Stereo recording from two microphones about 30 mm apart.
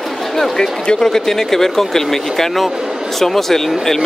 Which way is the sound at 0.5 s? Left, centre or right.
Left.